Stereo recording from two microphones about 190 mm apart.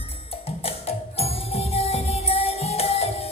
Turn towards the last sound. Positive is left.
turn(degrees=30)  # may be behind; listen again after turning